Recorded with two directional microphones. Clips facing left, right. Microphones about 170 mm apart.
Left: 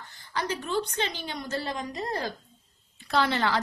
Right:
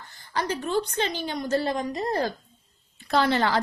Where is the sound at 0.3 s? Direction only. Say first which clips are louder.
Right 3 dB; 45° right (ahead or behind).